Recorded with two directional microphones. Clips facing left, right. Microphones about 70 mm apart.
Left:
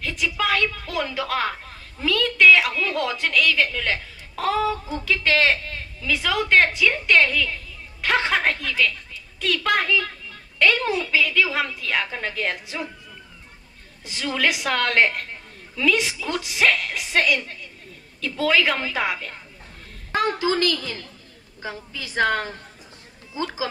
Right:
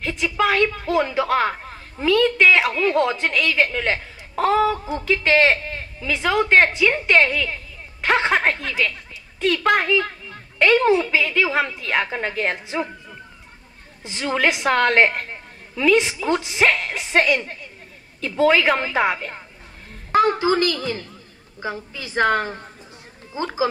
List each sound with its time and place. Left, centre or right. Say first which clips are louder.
0.0 s a man's voice: right 4 dB; right
14.0 s a child's voice: right 3 dB; right